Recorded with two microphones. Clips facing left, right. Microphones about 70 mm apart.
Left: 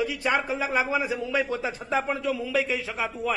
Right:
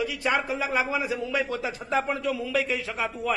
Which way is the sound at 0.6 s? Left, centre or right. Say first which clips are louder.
Left 1 dB; centre.